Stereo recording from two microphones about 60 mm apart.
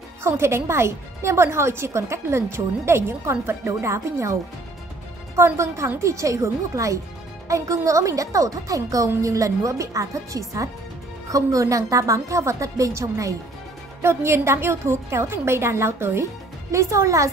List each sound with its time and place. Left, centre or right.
0.2 s a woman's voice: right
14.0 s a woman's voice: right
16.7 s speech: right